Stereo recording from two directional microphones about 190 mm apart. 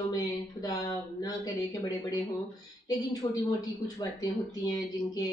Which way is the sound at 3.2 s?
20° left (ahead or behind).